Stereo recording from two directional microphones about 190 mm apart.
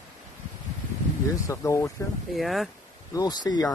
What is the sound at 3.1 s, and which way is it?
Speech, 20° left (ahead or behind).